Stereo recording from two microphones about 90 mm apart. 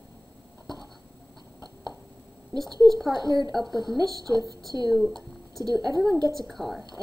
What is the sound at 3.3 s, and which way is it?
Speech, 45° right (ahead or behind).